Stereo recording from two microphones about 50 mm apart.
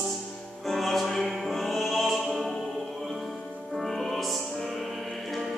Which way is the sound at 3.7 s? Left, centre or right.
Centre.